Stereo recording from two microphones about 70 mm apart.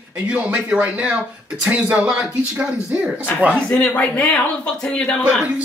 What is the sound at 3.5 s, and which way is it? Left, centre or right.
Speech, centre.